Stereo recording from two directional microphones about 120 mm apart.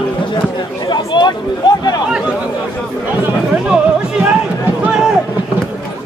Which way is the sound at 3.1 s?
10° right (ahead or behind).